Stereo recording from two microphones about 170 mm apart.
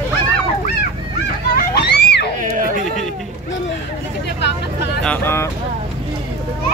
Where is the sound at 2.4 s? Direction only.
55° right (ahead or behind).